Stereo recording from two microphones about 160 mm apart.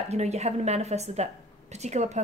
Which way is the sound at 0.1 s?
45° right (ahead or behind).